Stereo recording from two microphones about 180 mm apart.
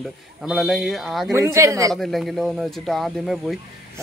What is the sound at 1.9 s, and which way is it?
Speech, centre (ahead or behind).